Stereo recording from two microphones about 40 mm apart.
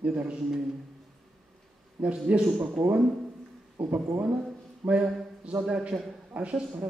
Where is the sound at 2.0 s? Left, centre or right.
Right.